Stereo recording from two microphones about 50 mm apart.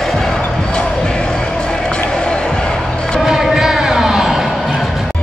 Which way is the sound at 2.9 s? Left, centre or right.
Centre.